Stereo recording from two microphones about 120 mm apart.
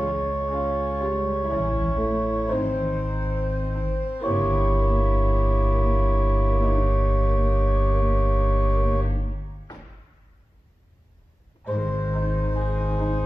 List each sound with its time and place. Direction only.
0.5 s organ: centre (ahead or behind)
1.4 s music: 10° left (ahead or behind)
5.2 s music: 5° left (ahead or behind)
11.6 s music: 15° left (ahead or behind)